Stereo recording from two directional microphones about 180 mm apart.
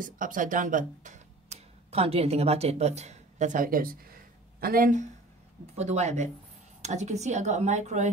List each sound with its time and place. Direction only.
0.0 s speech: 45° right (ahead or behind)
5.8 s speech: 40° right (ahead or behind)